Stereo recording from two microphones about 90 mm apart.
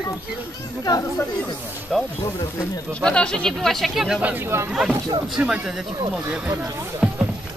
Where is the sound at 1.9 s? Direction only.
Centre (ahead or behind).